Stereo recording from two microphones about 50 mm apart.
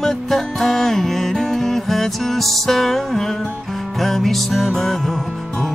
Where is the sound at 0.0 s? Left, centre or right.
Centre.